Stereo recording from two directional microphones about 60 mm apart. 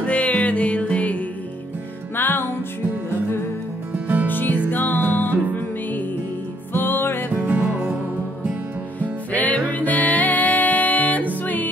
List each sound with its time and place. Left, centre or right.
0.0 s music: left
2.1 s music: left
4.3 s music: left
6.7 s music: left
7.3 s music: right
7.6 s music: centre
9.3 s music: left